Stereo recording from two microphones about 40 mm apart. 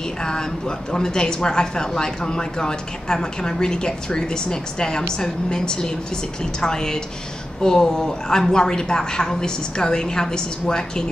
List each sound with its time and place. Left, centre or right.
0.2 s a woman's voice: centre